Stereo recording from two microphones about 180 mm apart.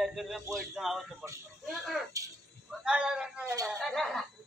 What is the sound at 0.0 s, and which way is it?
A man's voice, centre (ahead or behind).